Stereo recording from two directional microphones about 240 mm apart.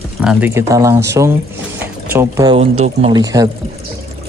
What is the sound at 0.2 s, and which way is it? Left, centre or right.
Speech, centre.